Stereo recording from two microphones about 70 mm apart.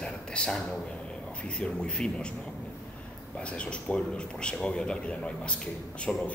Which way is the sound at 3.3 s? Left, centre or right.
Centre.